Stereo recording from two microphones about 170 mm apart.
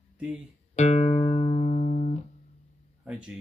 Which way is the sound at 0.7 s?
40° left (ahead or behind).